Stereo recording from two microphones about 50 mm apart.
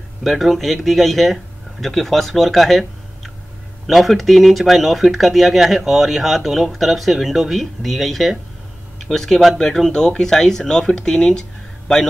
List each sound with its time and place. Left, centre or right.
0.2 s speech: centre